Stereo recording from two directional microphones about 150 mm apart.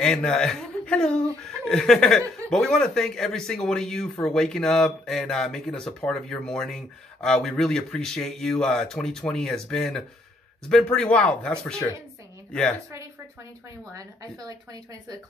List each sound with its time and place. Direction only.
0.0 s speech: 5° left (ahead or behind)
13.9 s a woman's voice: 25° right (ahead or behind)